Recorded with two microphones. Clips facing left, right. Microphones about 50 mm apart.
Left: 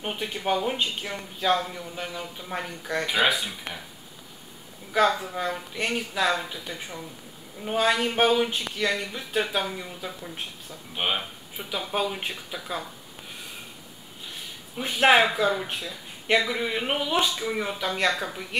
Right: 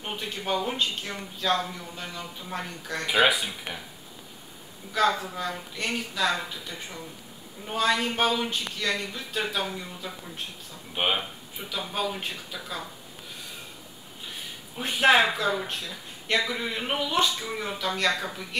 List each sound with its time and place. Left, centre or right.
0.0 s speech: centre
3.1 s speech: centre
5.0 s speech: centre
7.6 s speech: centre
11.0 s speech: centre
11.5 s speech: centre
14.8 s speech: centre